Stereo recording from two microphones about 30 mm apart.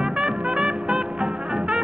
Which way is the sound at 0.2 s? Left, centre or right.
Right.